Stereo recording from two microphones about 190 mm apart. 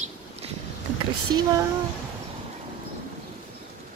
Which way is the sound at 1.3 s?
20° right (ahead or behind).